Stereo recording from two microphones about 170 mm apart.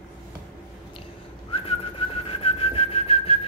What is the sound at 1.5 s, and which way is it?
Whistling, 35° left (ahead or behind).